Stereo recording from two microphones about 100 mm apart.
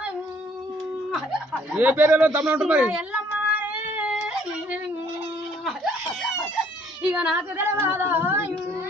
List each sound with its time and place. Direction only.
1.1 s snicker: 5° right (ahead or behind)
2.6 s cat: 10° right (ahead or behind)
4.1 s yodeling: 5° right (ahead or behind)
7.0 s speech: 10° right (ahead or behind)